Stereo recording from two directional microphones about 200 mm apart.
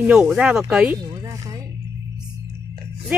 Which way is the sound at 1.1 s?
15° right (ahead or behind).